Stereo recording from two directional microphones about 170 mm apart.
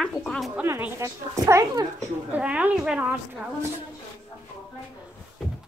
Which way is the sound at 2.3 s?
10° right (ahead or behind).